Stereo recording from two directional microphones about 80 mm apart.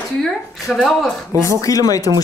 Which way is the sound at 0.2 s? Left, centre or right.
Centre.